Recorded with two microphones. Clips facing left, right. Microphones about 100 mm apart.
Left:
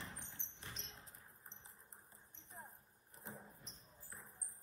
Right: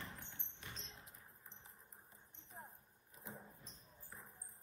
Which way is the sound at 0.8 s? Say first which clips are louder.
Even; 75° left (ahead or behind).